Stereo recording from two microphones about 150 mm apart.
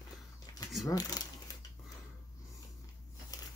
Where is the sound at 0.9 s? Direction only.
25° left (ahead or behind).